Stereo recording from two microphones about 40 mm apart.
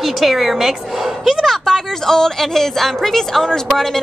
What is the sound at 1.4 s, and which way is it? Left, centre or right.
A woman's voice, centre.